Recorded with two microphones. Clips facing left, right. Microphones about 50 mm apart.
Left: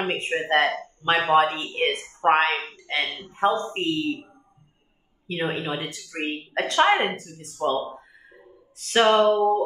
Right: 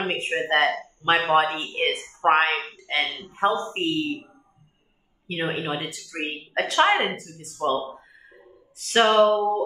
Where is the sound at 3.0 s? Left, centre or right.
Right.